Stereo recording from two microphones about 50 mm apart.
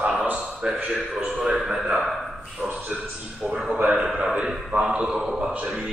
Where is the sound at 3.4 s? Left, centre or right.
Centre.